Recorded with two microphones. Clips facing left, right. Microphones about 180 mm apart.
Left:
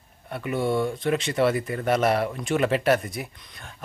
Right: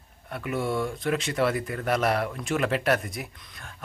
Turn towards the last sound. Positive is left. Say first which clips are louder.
# left 1 dB
turn(degrees=0)  # may be behind; listen again after turning